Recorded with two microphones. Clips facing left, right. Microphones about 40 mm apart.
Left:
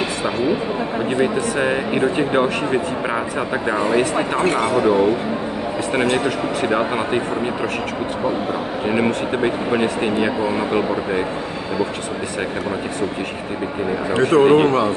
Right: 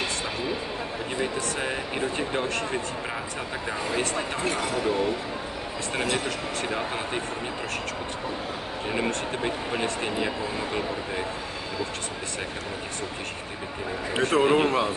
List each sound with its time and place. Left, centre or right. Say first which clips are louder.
1.1 s speech: left 9 dB; left
4.4 s speech: left 11 dB; left
5.9 s speech: left 9 dB; left
8.8 s speech: left 8 dB; left
14.1 s speech: left 8 dB; centre
14.4 s speech: left 8 dB; left